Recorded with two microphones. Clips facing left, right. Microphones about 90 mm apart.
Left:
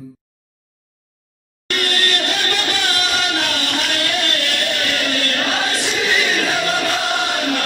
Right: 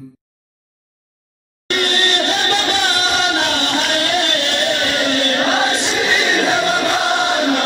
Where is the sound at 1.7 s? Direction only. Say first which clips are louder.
Right 3 dB; 25° right (ahead or behind).